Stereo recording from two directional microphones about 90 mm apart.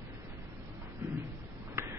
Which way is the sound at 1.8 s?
25° right (ahead or behind).